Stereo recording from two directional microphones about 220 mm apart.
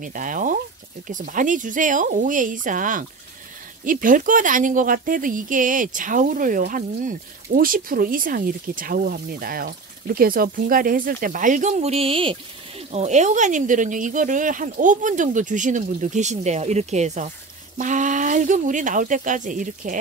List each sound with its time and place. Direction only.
0.0 s speech: 35° right (ahead or behind)